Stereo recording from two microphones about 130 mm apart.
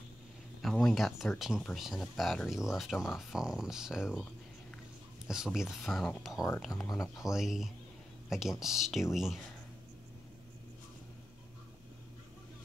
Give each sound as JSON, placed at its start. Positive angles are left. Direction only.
{"t": 0.6, "sound": "speech", "side_deg": 0}
{"t": 5.3, "sound": "speech", "side_deg": -5}
{"t": 6.9, "sound": "speech", "side_deg": 25}
{"t": 7.2, "sound": "speech", "side_deg": -5}